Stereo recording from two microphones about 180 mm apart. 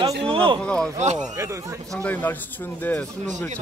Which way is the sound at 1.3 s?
15° right (ahead or behind).